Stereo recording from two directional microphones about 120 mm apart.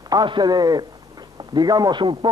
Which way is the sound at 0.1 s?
35° right (ahead or behind).